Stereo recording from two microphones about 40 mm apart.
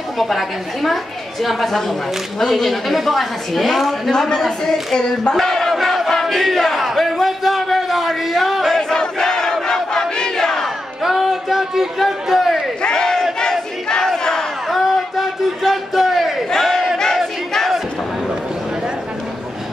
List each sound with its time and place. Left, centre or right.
0.2 s a woman's voice: centre
4.1 s a woman's voice: centre
5.3 s crowd: centre
5.8 s battle cry: centre
8.9 s battle cry: centre
11.0 s a sound: centre
12.8 s battle cry: centre
14.7 s a sound: centre